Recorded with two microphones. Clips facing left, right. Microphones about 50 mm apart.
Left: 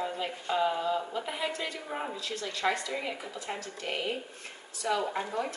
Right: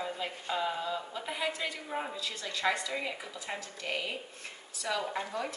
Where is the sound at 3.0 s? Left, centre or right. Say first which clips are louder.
Left 1 dB; left.